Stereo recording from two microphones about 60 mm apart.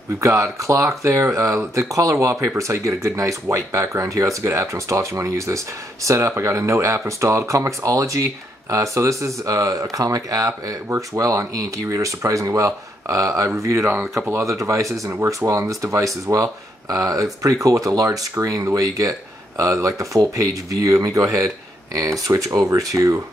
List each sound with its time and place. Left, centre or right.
0.2 s speech: right
18.4 s speech: right
22.3 s speech: right